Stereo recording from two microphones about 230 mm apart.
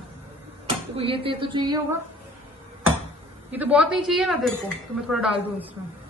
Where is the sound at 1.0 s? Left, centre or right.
Right.